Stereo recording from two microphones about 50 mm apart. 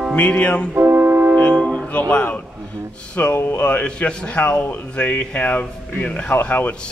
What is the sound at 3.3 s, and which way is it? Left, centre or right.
Music, left.